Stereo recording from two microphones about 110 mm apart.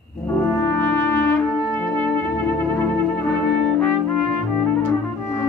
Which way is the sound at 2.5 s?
15° left (ahead or behind).